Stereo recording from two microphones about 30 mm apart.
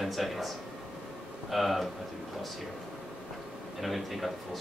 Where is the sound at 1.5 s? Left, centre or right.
Centre.